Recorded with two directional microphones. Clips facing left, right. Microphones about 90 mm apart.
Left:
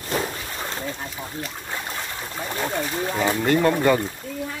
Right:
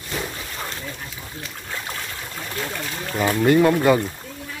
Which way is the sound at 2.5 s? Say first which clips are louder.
Left 4 dB; 20° left (ahead or behind).